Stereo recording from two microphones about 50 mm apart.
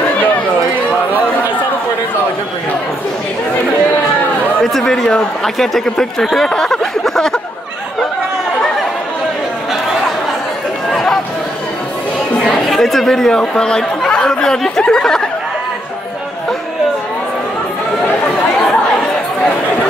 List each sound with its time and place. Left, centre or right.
4.7 s speech: centre
6.5 s a sound: centre
10.9 s chatter: centre
12.6 s speech: centre
18.6 s chatter: centre